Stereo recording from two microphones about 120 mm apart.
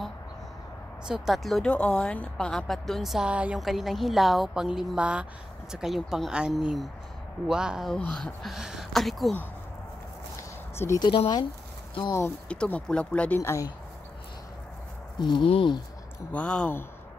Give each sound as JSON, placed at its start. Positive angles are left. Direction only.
{"t": 1.0, "sound": "speech", "side_deg": -5}
{"t": 11.0, "sound": "speech", "side_deg": 40}
{"t": 12.4, "sound": "speech", "side_deg": 10}
{"t": 13.4, "sound": "speech", "side_deg": 25}
{"t": 15.1, "sound": "speech", "side_deg": 40}
{"t": 16.3, "sound": "speech", "side_deg": 10}